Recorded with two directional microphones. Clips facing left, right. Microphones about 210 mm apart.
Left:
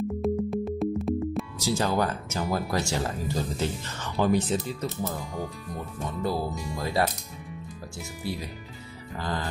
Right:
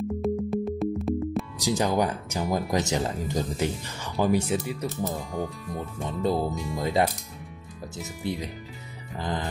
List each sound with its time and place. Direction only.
0.2 s music: centre (ahead or behind)
1.6 s speech: 15° right (ahead or behind)
5.3 s speech: centre (ahead or behind)
6.0 s speech: 20° right (ahead or behind)
6.5 s speech: centre (ahead or behind)
6.8 s speech: 15° right (ahead or behind)
8.2 s speech: 20° right (ahead or behind)
9.1 s music: 20° right (ahead or behind)